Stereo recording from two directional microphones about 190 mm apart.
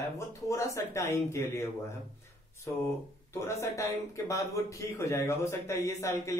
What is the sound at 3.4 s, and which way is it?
Speech, 15° left (ahead or behind).